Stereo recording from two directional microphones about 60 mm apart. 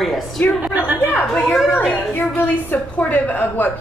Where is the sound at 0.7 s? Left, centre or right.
Right.